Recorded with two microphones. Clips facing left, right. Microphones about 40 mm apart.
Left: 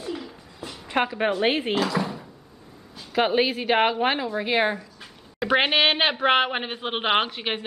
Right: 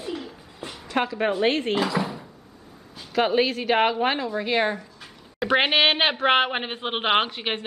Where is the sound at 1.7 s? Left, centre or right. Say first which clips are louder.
Even; centre.